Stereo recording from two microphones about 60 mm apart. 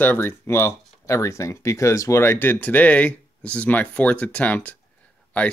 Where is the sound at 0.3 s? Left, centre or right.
Left.